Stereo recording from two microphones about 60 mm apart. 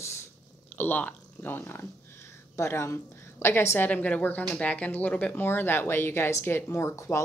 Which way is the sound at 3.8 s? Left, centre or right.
Left.